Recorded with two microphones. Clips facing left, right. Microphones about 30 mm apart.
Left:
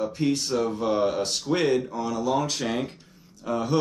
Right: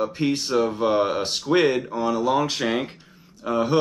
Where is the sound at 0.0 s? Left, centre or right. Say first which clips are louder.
Right 2 dB; right.